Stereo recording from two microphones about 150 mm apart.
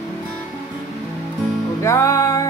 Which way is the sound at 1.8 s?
20° left (ahead or behind).